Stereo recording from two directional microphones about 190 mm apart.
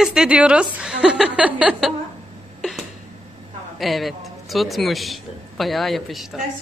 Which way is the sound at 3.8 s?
Centre (ahead or behind).